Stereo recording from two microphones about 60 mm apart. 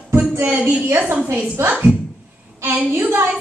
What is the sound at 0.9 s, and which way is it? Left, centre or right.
Speech, right.